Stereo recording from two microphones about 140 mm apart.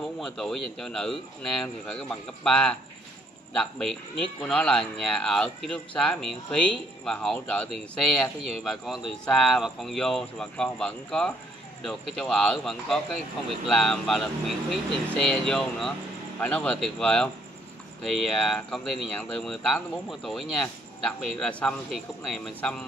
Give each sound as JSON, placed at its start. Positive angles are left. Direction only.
{"t": 0.2, "sound": "a man's voice", "side_deg": 0}